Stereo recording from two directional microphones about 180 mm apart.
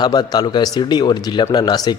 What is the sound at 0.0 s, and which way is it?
Speech, 20° left (ahead or behind).